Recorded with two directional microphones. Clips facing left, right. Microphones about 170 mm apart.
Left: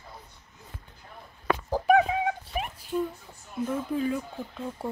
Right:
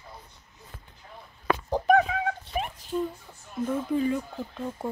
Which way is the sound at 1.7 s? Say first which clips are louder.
Even; 5° left (ahead or behind).